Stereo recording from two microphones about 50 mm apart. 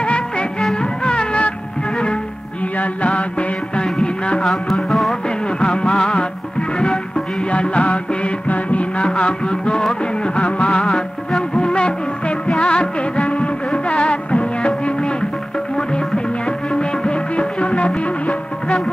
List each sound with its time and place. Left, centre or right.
0.0 s music: left
2.8 s music: left
4.6 s music: centre
5.6 s music: centre
16.4 s music: centre